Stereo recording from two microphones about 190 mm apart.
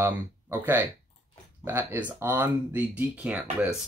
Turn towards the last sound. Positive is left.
turn(degrees=-5)  # may be behind; listen again after turning